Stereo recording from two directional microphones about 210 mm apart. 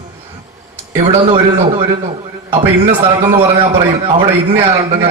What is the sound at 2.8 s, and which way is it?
A man's voice, 30° right (ahead or behind).